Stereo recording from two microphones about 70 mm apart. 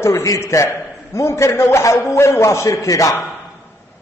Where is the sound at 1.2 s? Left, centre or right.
Left.